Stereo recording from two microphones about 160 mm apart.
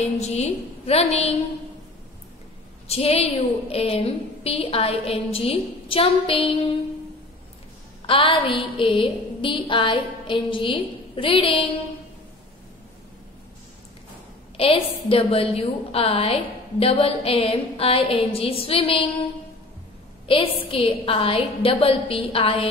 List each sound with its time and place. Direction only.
0.0 s a woman's voice: 45° left (ahead or behind)
2.9 s a woman's voice: 40° left (ahead or behind)
8.1 s a woman's voice: 35° left (ahead or behind)
14.6 s a woman's voice: 35° left (ahead or behind)
20.2 s a woman's voice: 35° left (ahead or behind)